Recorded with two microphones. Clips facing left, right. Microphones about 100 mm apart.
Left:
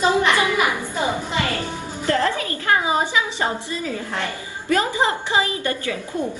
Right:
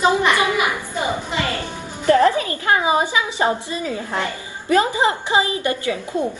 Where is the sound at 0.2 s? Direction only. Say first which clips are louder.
Right 1 dB; 20° right (ahead or behind).